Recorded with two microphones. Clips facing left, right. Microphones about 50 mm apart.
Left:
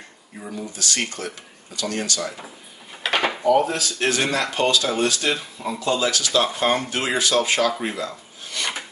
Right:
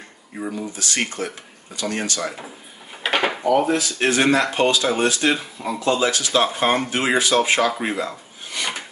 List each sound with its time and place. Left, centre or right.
0.6 s speech: right
3.0 s dishes: centre
3.6 s speech: right
8.6 s filing: right